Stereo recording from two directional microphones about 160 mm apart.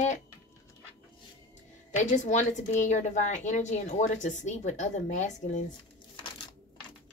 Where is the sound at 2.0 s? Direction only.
50° left (ahead or behind).